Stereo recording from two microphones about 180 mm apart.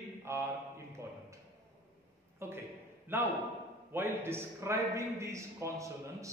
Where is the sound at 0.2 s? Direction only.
15° right (ahead or behind).